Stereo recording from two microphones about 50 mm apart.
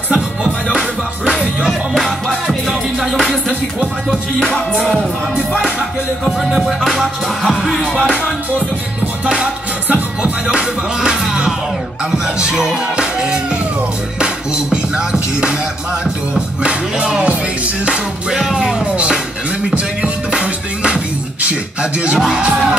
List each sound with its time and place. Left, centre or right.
0.1 s music: centre
1.7 s music: centre
4.5 s music: left
5.3 s music: centre
9.2 s music: centre
9.8 s music: right
10.4 s music: centre
18.3 s music: centre
19.7 s music: right